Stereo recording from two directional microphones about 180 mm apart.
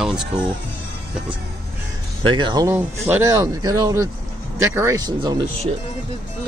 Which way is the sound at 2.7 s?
10° right (ahead or behind).